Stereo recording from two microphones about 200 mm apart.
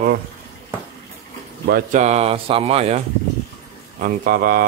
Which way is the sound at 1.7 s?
35° right (ahead or behind).